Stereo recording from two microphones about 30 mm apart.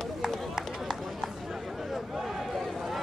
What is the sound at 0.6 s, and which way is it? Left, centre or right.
Run, centre.